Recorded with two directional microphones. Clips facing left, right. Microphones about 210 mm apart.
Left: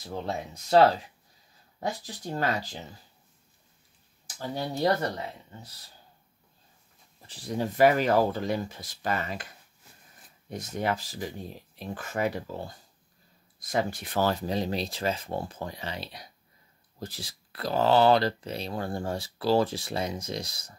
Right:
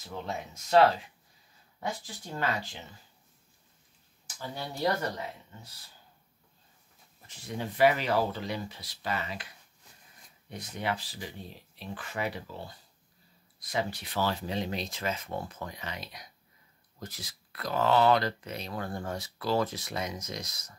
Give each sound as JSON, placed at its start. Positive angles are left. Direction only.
{"t": 0.0, "sound": "speech", "side_deg": 35}
{"t": 7.2, "sound": "speech", "side_deg": 35}
{"t": 10.5, "sound": "speech", "side_deg": 45}